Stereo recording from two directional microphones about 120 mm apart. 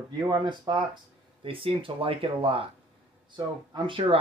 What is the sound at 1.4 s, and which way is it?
Speech, 50° right (ahead or behind).